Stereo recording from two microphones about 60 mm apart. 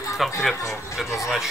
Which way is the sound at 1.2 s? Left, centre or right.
Centre.